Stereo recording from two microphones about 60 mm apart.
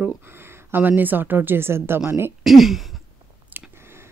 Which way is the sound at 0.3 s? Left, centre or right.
Right.